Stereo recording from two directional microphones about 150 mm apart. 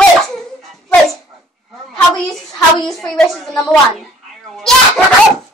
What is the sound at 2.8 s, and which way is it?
A woman's voice, 5° left (ahead or behind).